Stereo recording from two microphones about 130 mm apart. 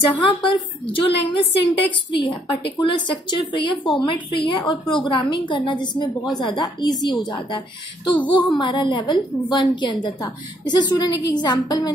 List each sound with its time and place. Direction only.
0.2 s a woman's voice: 40° left (ahead or behind)